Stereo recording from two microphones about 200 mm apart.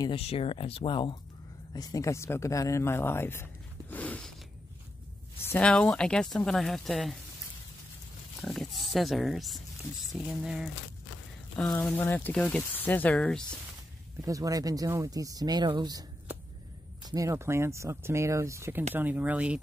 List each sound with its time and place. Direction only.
0.0 s speech: 30° left (ahead or behind); by 3.4 s 10° left (ahead or behind)
3.9 s a sound: 10° left (ahead or behind)
5.4 s speech: 10° left (ahead or behind)
8.4 s speech: centre (ahead or behind)
14.2 s speech: 15° right (ahead or behind)